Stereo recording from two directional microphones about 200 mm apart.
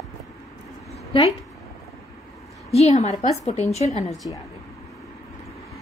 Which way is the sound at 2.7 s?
30° left (ahead or behind).